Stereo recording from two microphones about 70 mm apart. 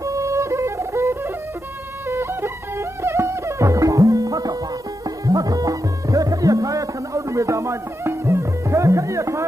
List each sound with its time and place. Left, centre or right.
0.0 s music: right